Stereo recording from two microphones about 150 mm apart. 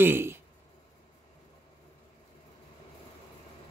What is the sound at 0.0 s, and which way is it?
Speech, 15° right (ahead or behind).